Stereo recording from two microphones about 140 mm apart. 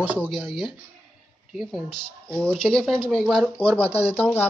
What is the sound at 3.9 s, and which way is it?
Speech, 45° left (ahead or behind).